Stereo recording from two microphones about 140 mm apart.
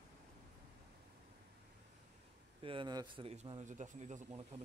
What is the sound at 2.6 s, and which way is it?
Speech, 35° right (ahead or behind).